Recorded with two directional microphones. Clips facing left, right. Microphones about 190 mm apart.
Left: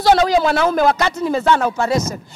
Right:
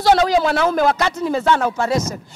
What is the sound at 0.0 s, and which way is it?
A man's voice, 10° left (ahead or behind).